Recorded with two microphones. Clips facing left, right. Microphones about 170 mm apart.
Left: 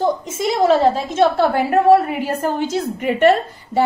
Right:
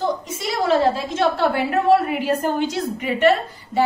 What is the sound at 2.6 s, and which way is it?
Speech, 50° left (ahead or behind).